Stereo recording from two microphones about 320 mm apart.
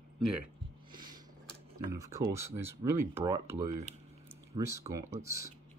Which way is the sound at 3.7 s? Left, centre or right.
Right.